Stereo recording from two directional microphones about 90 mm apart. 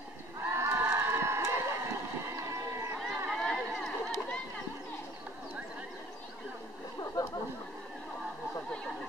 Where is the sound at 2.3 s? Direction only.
30° right (ahead or behind).